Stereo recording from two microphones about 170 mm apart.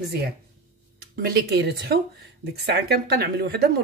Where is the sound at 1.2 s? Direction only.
65° right (ahead or behind).